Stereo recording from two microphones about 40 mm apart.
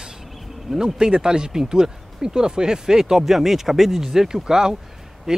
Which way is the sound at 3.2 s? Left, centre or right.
Centre.